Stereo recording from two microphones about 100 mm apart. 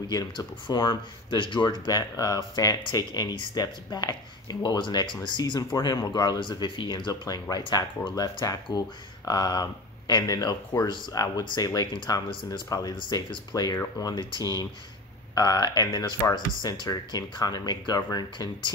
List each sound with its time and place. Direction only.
0.1 s speech: 40° left (ahead or behind)
11.9 s speech: 55° left (ahead or behind)
12.5 s speech: 40° left (ahead or behind)
12.9 s speech: 55° left (ahead or behind)
13.5 s speech: 45° left (ahead or behind)